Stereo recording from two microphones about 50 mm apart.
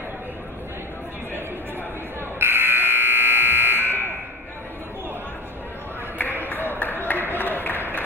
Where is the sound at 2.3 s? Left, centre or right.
Right.